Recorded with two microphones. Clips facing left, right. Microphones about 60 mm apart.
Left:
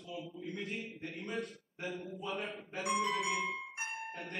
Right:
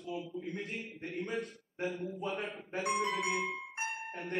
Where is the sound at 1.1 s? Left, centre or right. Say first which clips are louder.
Right 4 dB; right.